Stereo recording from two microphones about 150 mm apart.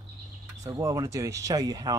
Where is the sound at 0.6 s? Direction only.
25° right (ahead or behind).